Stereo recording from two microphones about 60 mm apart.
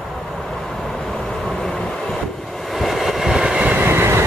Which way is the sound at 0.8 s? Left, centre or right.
Centre.